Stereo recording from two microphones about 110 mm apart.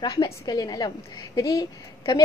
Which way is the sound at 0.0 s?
40° left (ahead or behind).